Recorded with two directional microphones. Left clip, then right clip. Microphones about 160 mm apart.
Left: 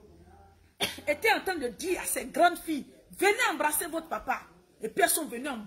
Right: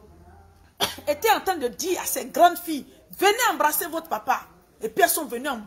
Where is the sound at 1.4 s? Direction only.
15° left (ahead or behind).